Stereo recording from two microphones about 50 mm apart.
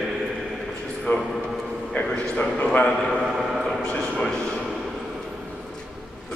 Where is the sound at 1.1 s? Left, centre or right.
Left.